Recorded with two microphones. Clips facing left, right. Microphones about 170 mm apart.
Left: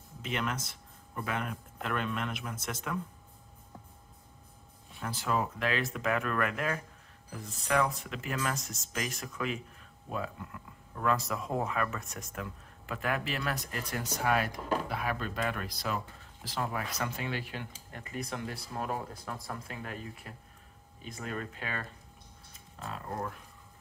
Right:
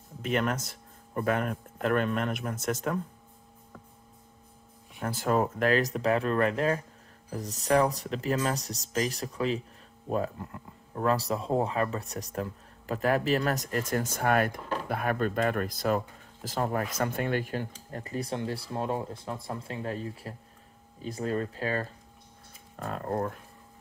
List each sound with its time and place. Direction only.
0.2 s speech: 45° right (ahead or behind)
5.0 s speech: 45° right (ahead or behind)
22.8 s speech: 50° right (ahead or behind)